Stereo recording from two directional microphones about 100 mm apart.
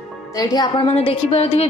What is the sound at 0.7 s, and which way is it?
Speech, 75° left (ahead or behind).